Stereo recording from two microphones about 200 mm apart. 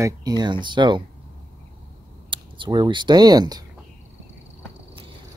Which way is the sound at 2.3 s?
25° right (ahead or behind).